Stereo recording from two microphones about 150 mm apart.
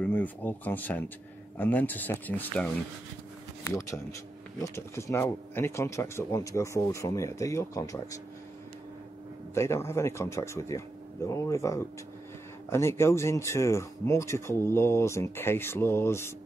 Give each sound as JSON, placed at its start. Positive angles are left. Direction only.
{"t": 0.0, "sound": "speech", "side_deg": 10}
{"t": 3.7, "sound": "speech", "side_deg": 20}
{"t": 9.5, "sound": "speech", "side_deg": 20}